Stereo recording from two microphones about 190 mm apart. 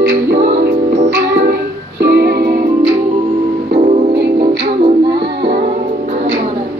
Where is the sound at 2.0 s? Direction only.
60° right (ahead or behind).